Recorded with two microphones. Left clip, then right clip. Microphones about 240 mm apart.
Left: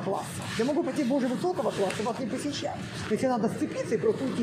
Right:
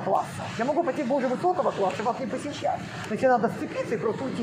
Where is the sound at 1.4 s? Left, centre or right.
Centre.